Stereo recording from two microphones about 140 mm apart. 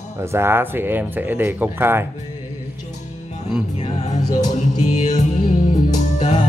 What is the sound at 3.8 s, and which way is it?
Music, 60° left (ahead or behind).